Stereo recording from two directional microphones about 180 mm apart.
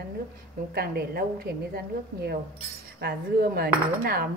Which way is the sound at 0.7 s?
60° right (ahead or behind).